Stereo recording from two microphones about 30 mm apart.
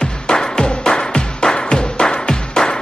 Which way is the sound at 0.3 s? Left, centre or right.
Left.